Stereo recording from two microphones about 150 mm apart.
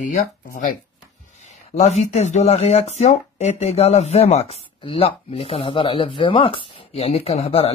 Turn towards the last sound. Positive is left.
turn(degrees=40)  # may be behind; listen again after turning